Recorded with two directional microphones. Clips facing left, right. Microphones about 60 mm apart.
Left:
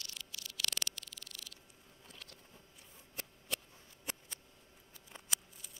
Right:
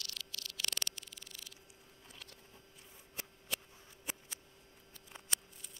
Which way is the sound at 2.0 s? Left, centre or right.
Centre.